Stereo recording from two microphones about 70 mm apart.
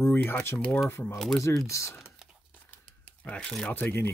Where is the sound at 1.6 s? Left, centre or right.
Left.